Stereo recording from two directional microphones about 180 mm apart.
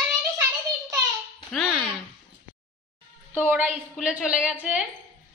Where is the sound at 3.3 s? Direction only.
5° right (ahead or behind).